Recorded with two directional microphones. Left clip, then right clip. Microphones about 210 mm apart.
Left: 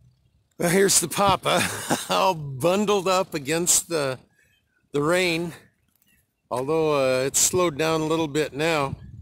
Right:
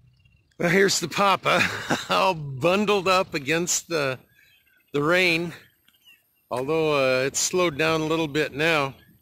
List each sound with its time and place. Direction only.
0.6 s speech: centre (ahead or behind)